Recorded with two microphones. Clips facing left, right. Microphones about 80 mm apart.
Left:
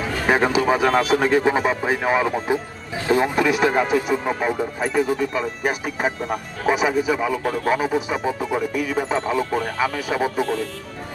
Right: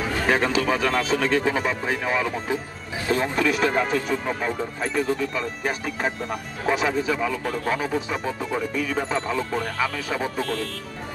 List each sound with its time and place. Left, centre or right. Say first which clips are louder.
0.3 s speech: left 4 dB; centre